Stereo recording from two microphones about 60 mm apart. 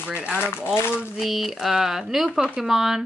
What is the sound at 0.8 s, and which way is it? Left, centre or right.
Speech, left.